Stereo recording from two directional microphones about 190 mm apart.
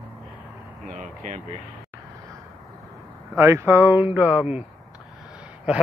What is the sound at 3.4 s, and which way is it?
Speech, 15° right (ahead or behind).